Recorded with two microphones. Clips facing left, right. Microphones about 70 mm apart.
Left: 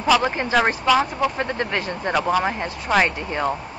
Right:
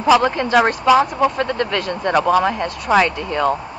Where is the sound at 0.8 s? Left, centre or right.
Centre.